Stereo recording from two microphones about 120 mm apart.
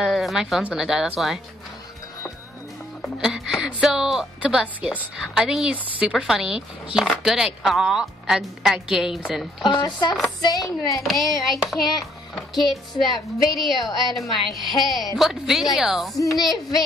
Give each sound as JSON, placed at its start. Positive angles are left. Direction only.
{"t": 0.0, "sound": "speech", "side_deg": 0}
{"t": 3.0, "sound": "speech", "side_deg": -5}
{"t": 9.6, "sound": "speech", "side_deg": 40}
{"t": 10.9, "sound": "speech", "side_deg": 0}
{"t": 12.5, "sound": "speech", "side_deg": 35}
{"t": 13.1, "sound": "speech", "side_deg": 0}